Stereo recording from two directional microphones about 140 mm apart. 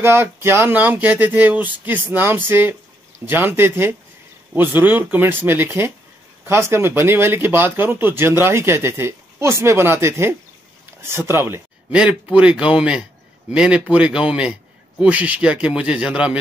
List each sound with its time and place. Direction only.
0.0 s speech: 15° right (ahead or behind)